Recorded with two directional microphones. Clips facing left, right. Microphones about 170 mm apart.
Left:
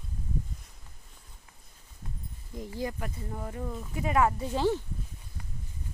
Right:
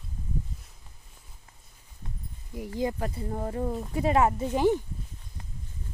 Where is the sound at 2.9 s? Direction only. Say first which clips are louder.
Right 6 dB; 35° right (ahead or behind); by 4.8 s 15° right (ahead or behind).